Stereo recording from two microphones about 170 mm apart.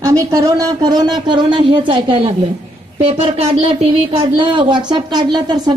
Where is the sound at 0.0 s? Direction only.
20° right (ahead or behind).